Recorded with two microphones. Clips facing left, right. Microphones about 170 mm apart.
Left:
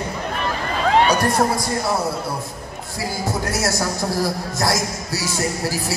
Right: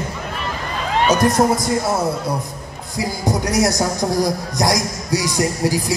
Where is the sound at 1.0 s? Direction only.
20° right (ahead or behind).